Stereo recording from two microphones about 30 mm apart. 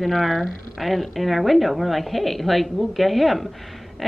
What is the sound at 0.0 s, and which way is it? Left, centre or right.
A woman's voice, centre.